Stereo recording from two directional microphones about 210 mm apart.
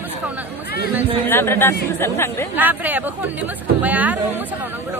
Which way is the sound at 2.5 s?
10° right (ahead or behind).